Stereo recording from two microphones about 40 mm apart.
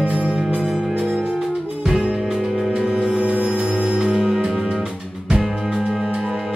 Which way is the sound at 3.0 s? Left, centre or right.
Right.